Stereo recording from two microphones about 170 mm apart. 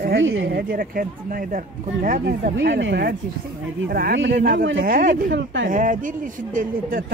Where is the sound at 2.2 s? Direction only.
80° right.